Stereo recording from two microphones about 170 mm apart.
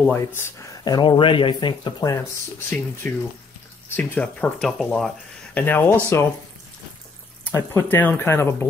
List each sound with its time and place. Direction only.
0.0 s speech: 15° left (ahead or behind)
3.0 s speech: 10° left (ahead or behind)
7.5 s speech: 10° left (ahead or behind)